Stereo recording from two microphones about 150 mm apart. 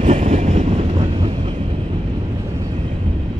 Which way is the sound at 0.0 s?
50° right (ahead or behind).